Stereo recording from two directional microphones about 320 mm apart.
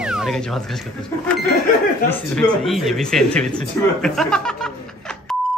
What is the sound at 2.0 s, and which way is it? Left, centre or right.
Speech, centre.